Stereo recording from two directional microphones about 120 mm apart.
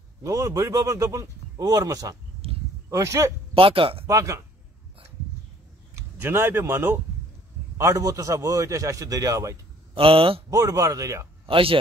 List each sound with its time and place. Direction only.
0.2 s a man's voice: 25° right (ahead or behind)
2.4 s a sound: 55° right (ahead or behind)
2.9 s a man's voice: 25° right (ahead or behind)
3.5 s a man's voice: 50° right (ahead or behind)
4.1 s a man's voice: 25° right (ahead or behind)
6.2 s a man's voice: 20° right (ahead or behind)
9.9 s a man's voice: 50° right (ahead or behind)
10.5 s a man's voice: 30° right (ahead or behind)
11.4 s a man's voice: 50° right (ahead or behind)